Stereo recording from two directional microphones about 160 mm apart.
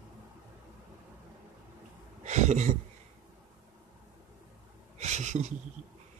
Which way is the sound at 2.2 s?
45° right (ahead or behind).